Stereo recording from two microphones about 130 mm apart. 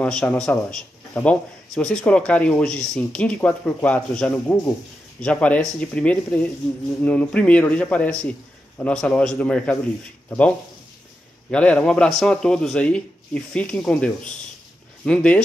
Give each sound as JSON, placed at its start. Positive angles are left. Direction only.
{"t": 0.0, "sound": "a man's voice", "side_deg": 10}
{"t": 11.5, "sound": "a man's voice", "side_deg": 10}